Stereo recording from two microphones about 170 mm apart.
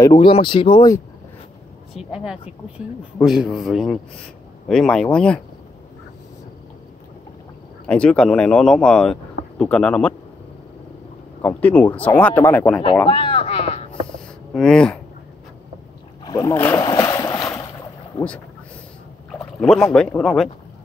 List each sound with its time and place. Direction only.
0.0 s speech: 30° left (ahead or behind)
2.0 s speech: 5° right (ahead or behind)
7.8 s speech: 5° left (ahead or behind)
11.4 s speech: 10° left (ahead or behind)
13.0 s speech: 30° left (ahead or behind)
14.5 s speech: 5° left (ahead or behind)
16.3 s speech: 15° left (ahead or behind)
16.8 s boat: 25° left (ahead or behind)
19.6 s speech: 5° left (ahead or behind)